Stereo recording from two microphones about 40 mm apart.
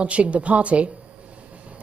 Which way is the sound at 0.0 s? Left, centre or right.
Right.